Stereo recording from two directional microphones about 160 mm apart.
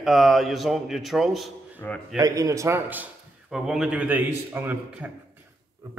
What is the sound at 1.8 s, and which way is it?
Speech, 15° left (ahead or behind).